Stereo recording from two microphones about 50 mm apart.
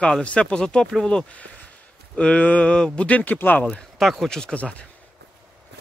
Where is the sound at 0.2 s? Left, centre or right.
Left.